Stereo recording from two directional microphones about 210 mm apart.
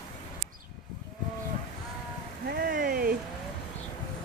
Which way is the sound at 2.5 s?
45° right (ahead or behind).